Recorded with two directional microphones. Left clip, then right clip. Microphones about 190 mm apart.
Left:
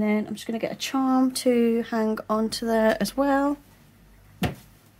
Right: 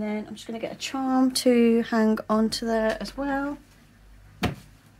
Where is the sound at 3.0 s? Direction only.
55° left (ahead or behind).